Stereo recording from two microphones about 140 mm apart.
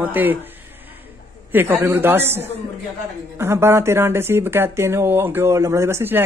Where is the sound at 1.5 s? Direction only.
15° right (ahead or behind).